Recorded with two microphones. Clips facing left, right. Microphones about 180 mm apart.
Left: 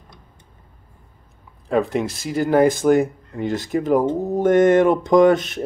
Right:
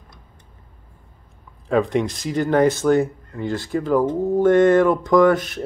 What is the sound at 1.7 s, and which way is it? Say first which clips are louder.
Speech: right 1 dB; 5° left (ahead or behind).